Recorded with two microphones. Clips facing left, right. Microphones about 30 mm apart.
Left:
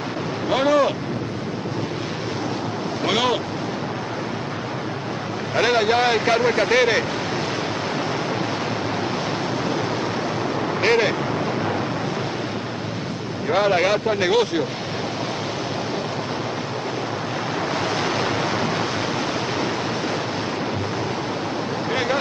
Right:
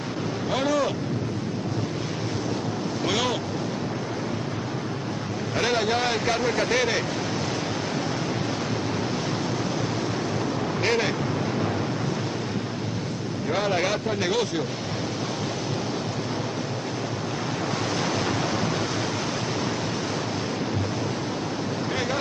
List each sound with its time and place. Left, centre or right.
0.5 s wind noise: left
3.1 s waves: left
5.6 s speech: left
10.8 s speech: left
13.5 s speech: left
18.2 s waves: left